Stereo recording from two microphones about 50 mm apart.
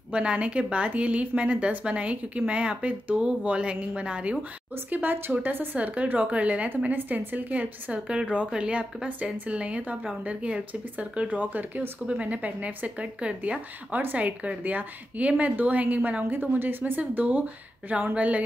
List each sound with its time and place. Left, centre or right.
0.1 s speech: right
4.8 s speech: right
5.8 s speech: right
16.3 s speech: right